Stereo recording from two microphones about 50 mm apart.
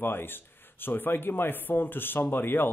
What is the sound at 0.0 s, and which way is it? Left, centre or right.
Speech, left.